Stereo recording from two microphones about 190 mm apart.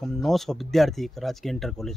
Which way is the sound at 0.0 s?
Centre (ahead or behind).